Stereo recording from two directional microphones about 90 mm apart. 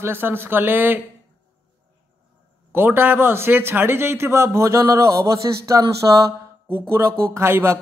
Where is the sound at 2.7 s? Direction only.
25° right (ahead or behind).